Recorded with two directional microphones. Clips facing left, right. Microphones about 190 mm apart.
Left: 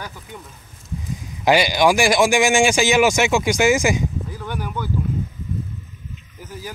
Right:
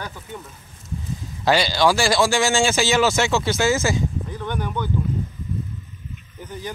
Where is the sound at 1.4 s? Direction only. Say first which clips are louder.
Left 2 dB; 15° left (ahead or behind).